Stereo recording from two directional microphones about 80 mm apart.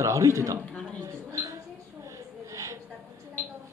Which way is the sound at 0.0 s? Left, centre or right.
Right.